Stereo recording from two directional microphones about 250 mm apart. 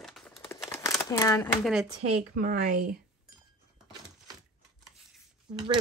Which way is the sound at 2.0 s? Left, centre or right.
Right.